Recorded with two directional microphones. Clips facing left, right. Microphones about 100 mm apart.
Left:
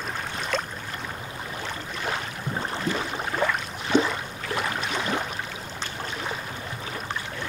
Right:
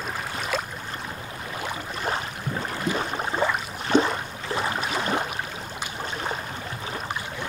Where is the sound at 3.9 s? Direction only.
40° right (ahead or behind).